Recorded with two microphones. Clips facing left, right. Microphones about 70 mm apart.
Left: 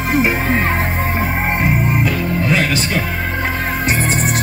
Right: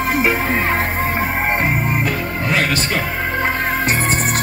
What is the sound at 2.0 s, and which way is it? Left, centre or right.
Music, right.